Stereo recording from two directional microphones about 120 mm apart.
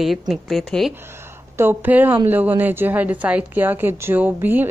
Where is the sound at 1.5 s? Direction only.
15° right (ahead or behind).